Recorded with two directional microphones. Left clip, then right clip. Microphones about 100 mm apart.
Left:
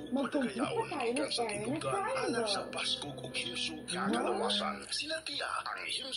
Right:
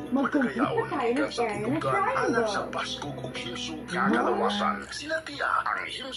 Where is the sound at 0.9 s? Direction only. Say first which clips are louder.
Right 7 dB; 25° left (ahead or behind).